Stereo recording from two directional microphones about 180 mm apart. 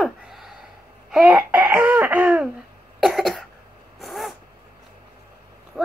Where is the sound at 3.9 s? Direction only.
Centre (ahead or behind).